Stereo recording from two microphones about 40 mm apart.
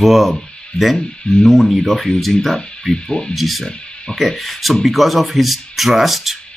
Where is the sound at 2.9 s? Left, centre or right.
Centre.